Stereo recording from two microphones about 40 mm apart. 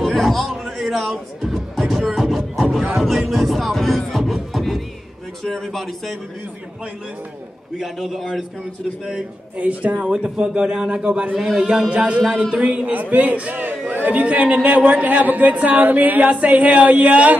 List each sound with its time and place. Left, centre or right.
0.0 s a sound: centre
1.4 s music: centre
3.0 s speech: centre
4.2 s beatboxing: centre
5.4 s speech: centre
7.8 s speech: centre
9.6 s speech: right
10.3 s a man's voice: right
11.9 s speech: right
12.8 s speech: right